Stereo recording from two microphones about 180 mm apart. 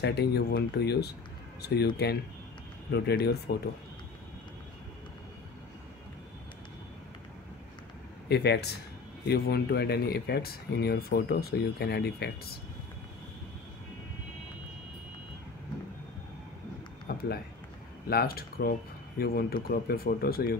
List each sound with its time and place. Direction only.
0.0 s speech: 65° left (ahead or behind)
2.9 s speech: 65° left (ahead or behind)
8.3 s speech: 65° left (ahead or behind)
17.1 s a sound: 55° left (ahead or behind)
18.0 s speech: 55° left (ahead or behind)